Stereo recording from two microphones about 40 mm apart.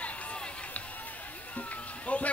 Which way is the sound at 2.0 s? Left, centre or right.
Left.